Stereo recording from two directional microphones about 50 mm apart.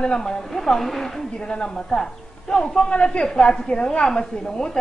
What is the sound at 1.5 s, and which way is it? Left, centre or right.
Speech, centre.